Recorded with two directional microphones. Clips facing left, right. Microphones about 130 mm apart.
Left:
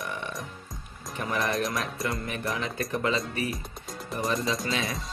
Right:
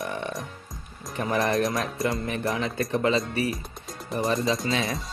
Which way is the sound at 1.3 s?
25° right (ahead or behind).